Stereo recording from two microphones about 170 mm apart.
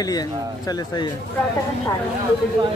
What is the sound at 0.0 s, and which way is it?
Speech, 20° left (ahead or behind).